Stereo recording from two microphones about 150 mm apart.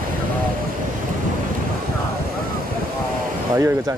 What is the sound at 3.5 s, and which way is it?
Speech, 15° right (ahead or behind).